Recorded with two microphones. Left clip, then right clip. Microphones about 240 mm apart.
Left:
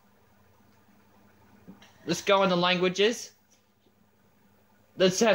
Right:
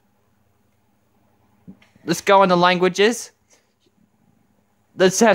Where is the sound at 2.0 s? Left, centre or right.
Right.